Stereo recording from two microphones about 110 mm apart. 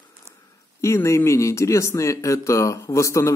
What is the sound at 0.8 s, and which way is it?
Speech, 25° left (ahead or behind).